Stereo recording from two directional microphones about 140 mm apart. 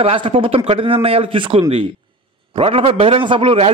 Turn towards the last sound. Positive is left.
turn(degrees=-40)  # may be behind; listen again after turning